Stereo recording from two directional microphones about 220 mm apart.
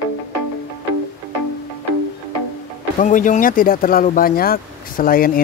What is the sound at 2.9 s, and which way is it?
Speech, 35° left (ahead or behind).